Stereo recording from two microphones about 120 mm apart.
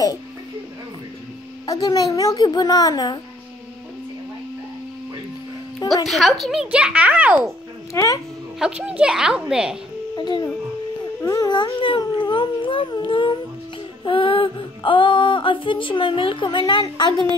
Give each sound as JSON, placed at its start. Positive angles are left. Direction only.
{"t": 1.7, "sound": "speech", "side_deg": 30}
{"t": 6.0, "sound": "a child's voice", "side_deg": 0}
{"t": 7.9, "sound": "a child's voice", "side_deg": 25}
{"t": 8.5, "sound": "a child's voice", "side_deg": -5}
{"t": 10.1, "sound": "speech", "side_deg": 35}
{"t": 14.0, "sound": "female singing", "side_deg": 45}